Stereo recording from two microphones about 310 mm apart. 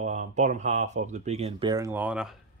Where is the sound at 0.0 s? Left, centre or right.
Right.